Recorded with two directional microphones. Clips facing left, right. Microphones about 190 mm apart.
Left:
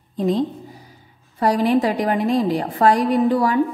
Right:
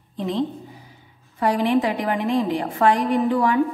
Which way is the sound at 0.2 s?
40° left (ahead or behind).